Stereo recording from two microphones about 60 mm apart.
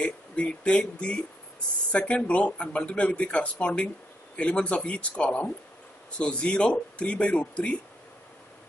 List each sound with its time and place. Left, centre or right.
0.0 s speech: centre